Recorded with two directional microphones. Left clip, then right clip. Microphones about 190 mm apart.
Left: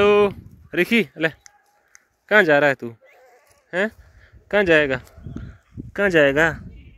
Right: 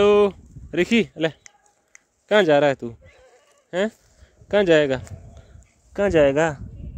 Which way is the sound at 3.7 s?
5° right (ahead or behind).